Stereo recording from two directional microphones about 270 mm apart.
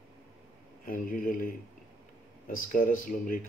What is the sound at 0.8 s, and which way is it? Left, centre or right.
Speech, left.